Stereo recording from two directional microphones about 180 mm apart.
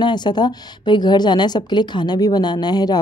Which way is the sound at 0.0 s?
25° left (ahead or behind).